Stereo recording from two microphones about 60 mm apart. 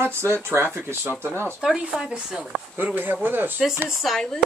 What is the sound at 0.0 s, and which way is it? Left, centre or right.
Speech, right.